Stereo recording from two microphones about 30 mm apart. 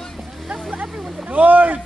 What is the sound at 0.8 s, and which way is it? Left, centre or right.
Speech, centre.